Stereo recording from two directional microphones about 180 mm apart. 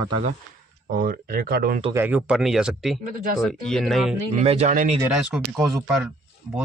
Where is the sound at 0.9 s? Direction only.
55° right (ahead or behind).